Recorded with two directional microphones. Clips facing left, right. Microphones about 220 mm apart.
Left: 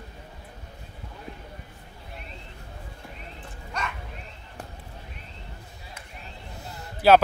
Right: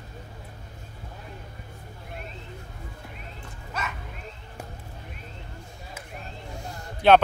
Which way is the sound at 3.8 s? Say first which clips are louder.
Left 1 dB; 5° right (ahead or behind).